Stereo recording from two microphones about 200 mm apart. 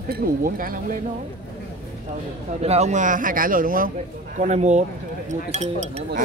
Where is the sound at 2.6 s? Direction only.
35° right (ahead or behind).